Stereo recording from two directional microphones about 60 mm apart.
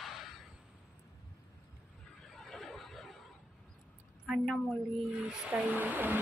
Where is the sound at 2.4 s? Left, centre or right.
Centre.